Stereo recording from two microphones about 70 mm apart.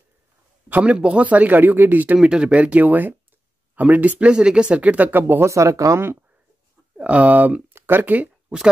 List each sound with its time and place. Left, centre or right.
0.7 s a man's voice: right
2.1 s speech: centre
5.3 s speech: right
7.0 s speech: centre
7.7 s a sound: right